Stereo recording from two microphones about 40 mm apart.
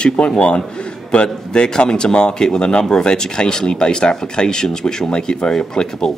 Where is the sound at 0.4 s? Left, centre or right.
Left.